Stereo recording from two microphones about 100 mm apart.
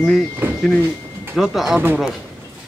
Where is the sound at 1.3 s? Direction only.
Centre (ahead or behind).